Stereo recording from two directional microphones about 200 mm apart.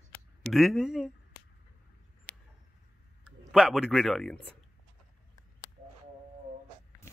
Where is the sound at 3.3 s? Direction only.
Centre (ahead or behind).